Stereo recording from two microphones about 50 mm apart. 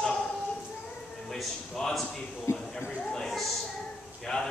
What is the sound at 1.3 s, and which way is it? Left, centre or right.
Speech, centre.